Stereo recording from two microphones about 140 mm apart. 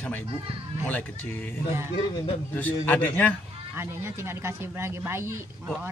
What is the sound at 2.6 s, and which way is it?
Speech, 10° left (ahead or behind).